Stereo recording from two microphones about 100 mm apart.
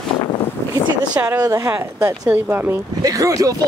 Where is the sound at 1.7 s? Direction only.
15° right (ahead or behind).